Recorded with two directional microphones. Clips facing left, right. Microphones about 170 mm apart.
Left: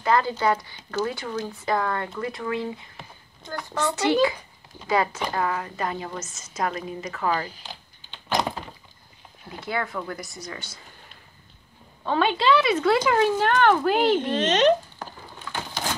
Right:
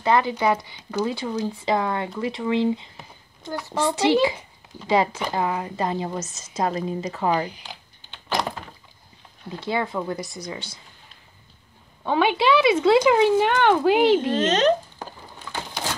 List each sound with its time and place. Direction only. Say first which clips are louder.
0.0 s speech: right 2 dB; 20° right (ahead or behind)
3.4 s a child's voice: right 3 dB; 5° right (ahead or behind)
3.7 s speech: right 3 dB; 30° right (ahead or behind)
6.1 s a woman's voice: right 4 dB; 35° right (ahead or behind)
7.2 s speech: right 2 dB; 20° right (ahead or behind)
9.7 s speech: right 4 dB; 20° right (ahead or behind)
12.0 s speech: right 2 dB; 10° right (ahead or behind)
14.3 s a woman's voice: right 1 dB; 40° right (ahead or behind)